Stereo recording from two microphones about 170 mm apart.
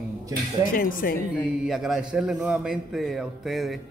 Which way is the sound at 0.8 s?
55° left (ahead or behind).